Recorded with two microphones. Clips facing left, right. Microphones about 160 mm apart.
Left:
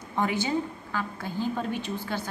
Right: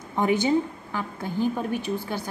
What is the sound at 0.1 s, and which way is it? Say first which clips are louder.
A woman's voice: right 5 dB; 20° right (ahead or behind).